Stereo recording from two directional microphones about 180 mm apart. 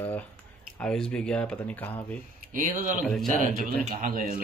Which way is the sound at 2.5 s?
45° right (ahead or behind).